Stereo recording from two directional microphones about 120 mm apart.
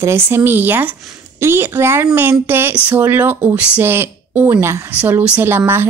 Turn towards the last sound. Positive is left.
turn(degrees=-20)  # may be behind; listen again after turning